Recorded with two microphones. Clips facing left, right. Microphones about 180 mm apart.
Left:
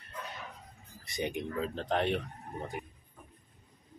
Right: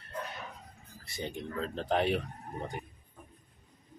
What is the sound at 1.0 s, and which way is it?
Speech, 15° left (ahead or behind).